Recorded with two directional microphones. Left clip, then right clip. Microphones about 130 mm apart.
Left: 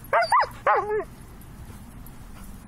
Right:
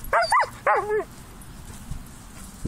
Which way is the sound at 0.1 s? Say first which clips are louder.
Even; centre (ahead or behind).